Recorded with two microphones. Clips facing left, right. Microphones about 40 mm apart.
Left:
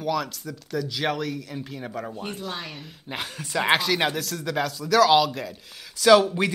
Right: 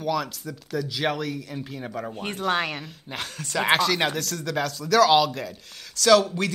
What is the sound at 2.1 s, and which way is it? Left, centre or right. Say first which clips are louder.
Speech: right 7 dB; right.